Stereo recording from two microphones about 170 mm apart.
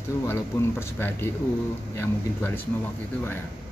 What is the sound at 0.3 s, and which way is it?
Speech, 15° left (ahead or behind).